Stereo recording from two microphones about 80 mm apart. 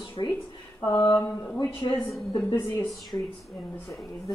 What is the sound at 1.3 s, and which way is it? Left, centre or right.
Speech, centre.